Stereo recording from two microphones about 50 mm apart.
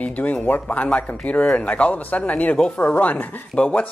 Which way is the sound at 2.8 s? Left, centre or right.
Left.